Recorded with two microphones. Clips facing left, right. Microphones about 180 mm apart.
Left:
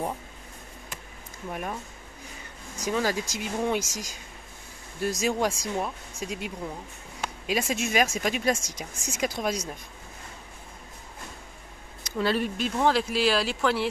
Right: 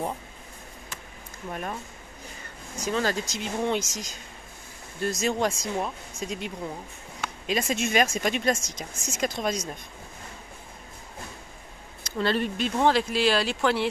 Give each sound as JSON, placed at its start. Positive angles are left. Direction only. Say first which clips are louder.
{"t": 1.5, "sound": "speech", "louder": "even", "side_deg": 10}
{"t": 2.8, "sound": "speech", "louder": "even", "side_deg": 10}
{"t": 12.0, "sound": "speech", "louder": "even", "side_deg": 5}